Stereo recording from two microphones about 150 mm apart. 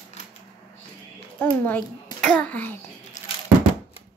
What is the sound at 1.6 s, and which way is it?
Speech, 10° left (ahead or behind).